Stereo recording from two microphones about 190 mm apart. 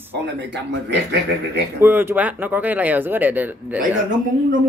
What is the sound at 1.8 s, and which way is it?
Speech, 10° right (ahead or behind).